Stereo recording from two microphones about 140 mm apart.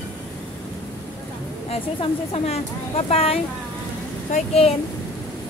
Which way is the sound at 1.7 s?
45° left (ahead or behind).